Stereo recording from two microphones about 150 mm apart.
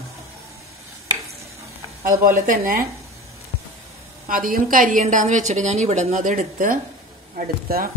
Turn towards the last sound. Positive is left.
turn(degrees=-70)  # may be behind; listen again after turning